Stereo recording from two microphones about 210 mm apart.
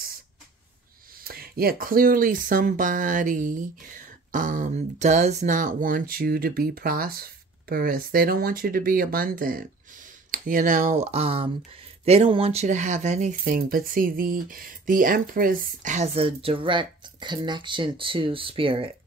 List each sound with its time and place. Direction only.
1.2 s speech: 45° right (ahead or behind); by 18.9 s 25° right (ahead or behind)